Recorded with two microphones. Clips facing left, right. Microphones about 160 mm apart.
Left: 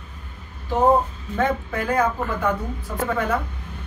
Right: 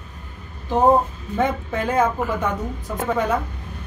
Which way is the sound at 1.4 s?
20° right (ahead or behind).